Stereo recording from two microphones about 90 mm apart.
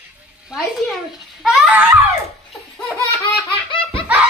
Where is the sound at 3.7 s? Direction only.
80° left.